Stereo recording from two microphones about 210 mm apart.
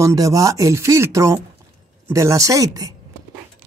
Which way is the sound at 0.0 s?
15° right (ahead or behind).